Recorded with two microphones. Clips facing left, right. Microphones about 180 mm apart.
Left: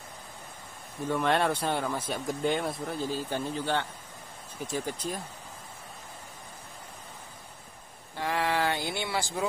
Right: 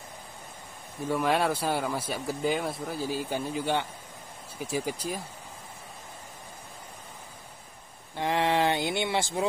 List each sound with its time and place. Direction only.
1.0 s speech: 5° right (ahead or behind)
8.2 s speech: 20° right (ahead or behind)